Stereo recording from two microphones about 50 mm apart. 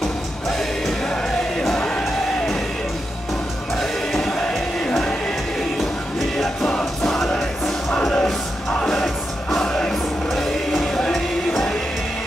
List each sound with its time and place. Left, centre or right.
1.0 s music: centre
3.7 s music: centre
6.3 s music: centre
7.9 s music: centre
8.8 s music: centre